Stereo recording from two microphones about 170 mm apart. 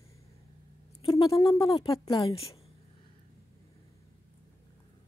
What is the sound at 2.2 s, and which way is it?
Speech, 35° left (ahead or behind).